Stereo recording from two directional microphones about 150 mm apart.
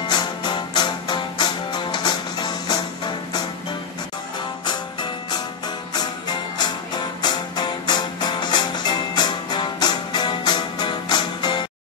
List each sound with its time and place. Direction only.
0.1 s music: 30° left (ahead or behind)
4.6 s music: 30° left (ahead or behind)